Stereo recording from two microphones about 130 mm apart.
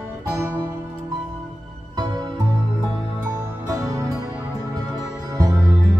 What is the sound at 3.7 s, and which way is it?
Music, 30° right (ahead or behind).